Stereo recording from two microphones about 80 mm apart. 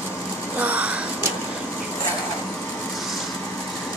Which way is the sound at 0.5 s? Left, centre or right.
Centre.